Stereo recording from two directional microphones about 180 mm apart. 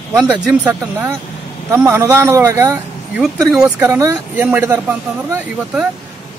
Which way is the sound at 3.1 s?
Centre (ahead or behind).